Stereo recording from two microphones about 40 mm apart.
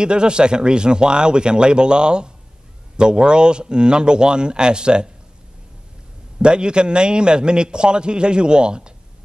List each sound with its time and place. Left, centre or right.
0.0 s a man's voice: right
6.3 s a man's voice: right